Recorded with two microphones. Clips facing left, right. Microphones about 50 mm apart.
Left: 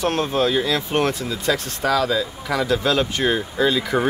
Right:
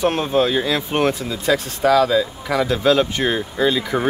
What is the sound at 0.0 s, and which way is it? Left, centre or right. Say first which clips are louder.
Speech: right 2 dB; centre.